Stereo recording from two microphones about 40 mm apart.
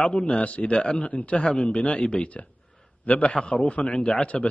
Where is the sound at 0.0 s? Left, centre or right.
Left.